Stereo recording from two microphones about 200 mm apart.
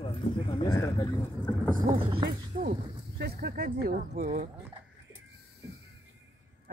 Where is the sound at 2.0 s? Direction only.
25° right (ahead or behind).